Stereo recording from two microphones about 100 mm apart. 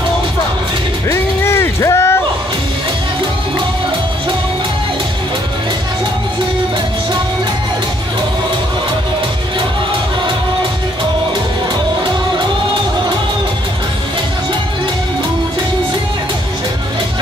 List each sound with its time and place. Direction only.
1.0 s music: 30° left (ahead or behind)